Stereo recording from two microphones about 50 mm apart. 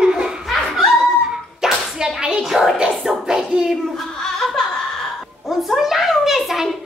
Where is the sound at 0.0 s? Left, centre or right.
Centre.